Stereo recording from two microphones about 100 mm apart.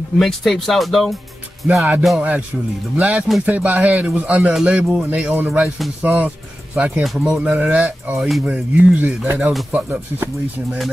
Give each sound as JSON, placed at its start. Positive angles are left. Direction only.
{"t": 0.2, "sound": "speech", "side_deg": 0}
{"t": 1.6, "sound": "music", "side_deg": 0}
{"t": 2.0, "sound": "speech", "side_deg": -10}
{"t": 8.2, "sound": "speech", "side_deg": 0}
{"t": 8.7, "sound": "speech", "side_deg": -15}